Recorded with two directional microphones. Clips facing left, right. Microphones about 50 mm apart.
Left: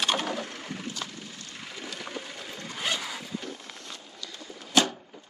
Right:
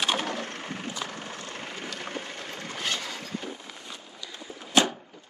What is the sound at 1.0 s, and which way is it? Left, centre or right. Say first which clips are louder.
Vehicle: right 5 dB; right.